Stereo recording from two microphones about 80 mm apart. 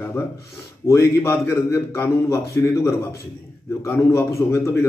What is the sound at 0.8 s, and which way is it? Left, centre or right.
A man's voice, left.